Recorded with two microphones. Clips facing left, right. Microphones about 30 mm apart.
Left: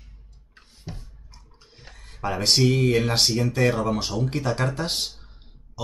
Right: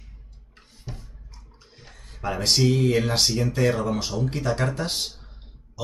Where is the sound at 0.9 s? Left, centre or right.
Left.